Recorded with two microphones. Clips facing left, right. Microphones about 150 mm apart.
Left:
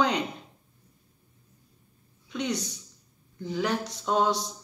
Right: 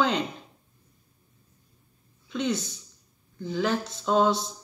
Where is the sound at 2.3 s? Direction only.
20° left (ahead or behind).